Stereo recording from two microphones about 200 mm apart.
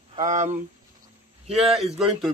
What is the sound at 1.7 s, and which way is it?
Speech, centre (ahead or behind).